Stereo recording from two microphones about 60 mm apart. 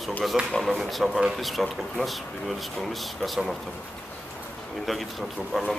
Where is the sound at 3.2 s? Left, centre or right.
Centre.